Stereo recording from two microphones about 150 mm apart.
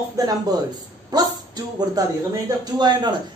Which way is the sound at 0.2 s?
25° right (ahead or behind).